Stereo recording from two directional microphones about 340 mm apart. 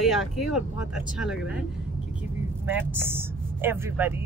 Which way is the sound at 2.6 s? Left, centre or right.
Centre.